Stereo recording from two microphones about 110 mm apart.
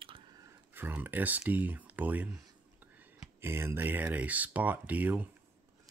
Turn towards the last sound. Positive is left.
turn(degrees=-15)  # may be behind; listen again after turning